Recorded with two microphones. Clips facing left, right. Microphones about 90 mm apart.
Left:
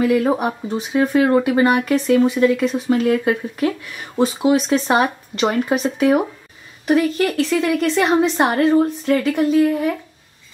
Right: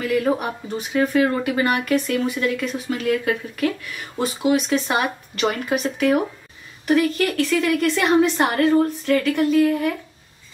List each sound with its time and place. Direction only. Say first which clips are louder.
0.0 s a woman's voice: left 4 dB; 25° left (ahead or behind)